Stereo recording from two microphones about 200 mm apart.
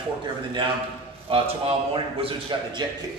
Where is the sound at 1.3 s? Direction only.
30° right (ahead or behind).